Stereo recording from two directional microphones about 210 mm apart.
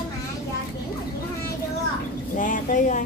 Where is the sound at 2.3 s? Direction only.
40° left (ahead or behind).